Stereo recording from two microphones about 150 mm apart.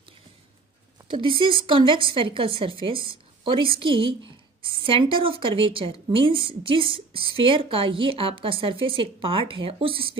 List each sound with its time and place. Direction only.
1.0 s speech: 35° right (ahead or behind)